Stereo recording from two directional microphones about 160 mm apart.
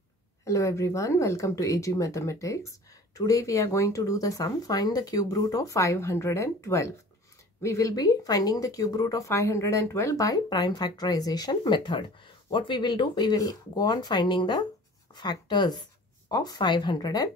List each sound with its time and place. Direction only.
0.5 s speech: 20° left (ahead or behind)